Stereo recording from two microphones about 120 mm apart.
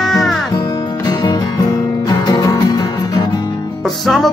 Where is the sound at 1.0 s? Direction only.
35° left (ahead or behind).